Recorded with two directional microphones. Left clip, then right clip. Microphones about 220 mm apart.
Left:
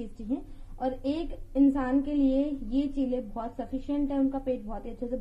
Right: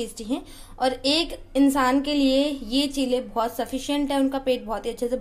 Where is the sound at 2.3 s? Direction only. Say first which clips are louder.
Right 6 dB; 10° right (ahead or behind).